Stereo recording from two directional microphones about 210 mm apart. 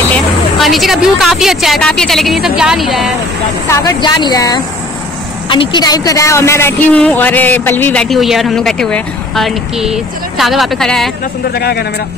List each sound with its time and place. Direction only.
0.1 s speech: centre (ahead or behind)
3.6 s a woman's voice: 15° left (ahead or behind)
11.5 s speech: 50° left (ahead or behind)